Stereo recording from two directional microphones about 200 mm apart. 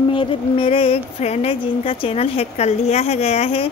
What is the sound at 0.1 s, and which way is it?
A woman's voice, 25° left (ahead or behind).